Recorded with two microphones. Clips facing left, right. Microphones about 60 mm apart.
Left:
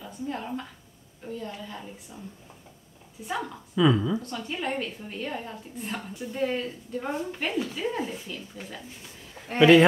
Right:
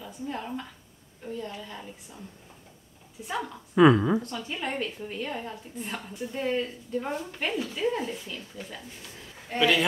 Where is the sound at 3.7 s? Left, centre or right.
Right.